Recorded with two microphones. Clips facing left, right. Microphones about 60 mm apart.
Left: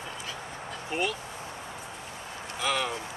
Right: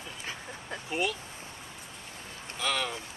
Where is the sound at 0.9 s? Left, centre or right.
Centre.